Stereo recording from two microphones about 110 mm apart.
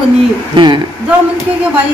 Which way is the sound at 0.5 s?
45° right (ahead or behind).